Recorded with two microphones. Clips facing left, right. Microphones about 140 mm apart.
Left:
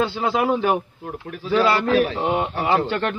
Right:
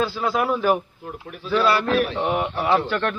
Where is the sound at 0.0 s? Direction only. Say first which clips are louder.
Left 2 dB; 25° left (ahead or behind).